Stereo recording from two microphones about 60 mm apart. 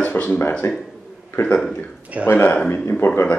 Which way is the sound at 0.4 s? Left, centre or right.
Left.